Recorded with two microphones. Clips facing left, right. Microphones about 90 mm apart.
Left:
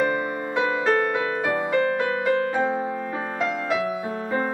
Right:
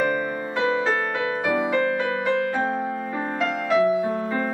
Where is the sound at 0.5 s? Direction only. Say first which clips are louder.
Left 1 dB; 5° left (ahead or behind).